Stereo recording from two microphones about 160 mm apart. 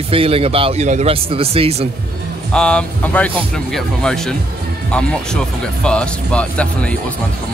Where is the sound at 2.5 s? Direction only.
5° left (ahead or behind).